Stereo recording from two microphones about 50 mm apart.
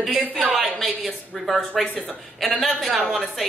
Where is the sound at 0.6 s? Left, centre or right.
Centre.